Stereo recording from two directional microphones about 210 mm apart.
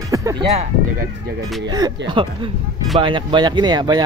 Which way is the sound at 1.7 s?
20° right (ahead or behind).